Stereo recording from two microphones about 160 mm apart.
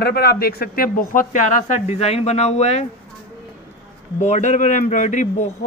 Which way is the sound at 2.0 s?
40° left (ahead or behind).